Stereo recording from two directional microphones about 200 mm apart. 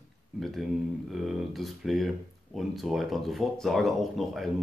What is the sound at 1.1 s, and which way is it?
Speech, centre (ahead or behind).